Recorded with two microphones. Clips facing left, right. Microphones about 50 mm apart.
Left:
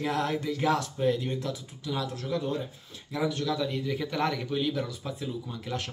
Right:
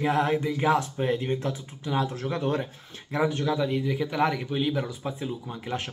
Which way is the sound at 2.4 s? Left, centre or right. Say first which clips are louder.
Right 5 dB; right.